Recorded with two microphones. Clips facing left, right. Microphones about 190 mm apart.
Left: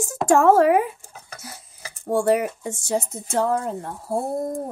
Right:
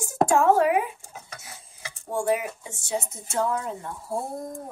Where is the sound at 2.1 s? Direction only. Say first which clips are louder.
Left 6 dB; 70° left (ahead or behind).